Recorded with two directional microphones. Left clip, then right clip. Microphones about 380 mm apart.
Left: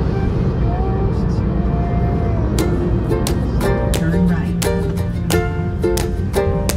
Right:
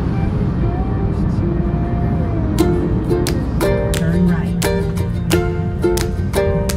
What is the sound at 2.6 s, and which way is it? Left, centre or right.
Music, centre.